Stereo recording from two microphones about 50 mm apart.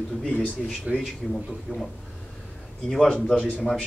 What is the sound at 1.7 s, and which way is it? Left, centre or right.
Speech, right.